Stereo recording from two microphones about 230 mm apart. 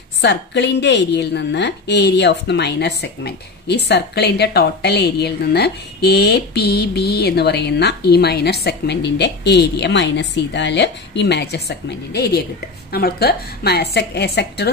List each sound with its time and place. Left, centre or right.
0.2 s speech: left